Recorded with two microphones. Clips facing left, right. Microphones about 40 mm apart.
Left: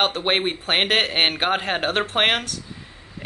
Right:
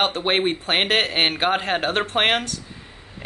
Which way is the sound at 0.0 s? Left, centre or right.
Centre.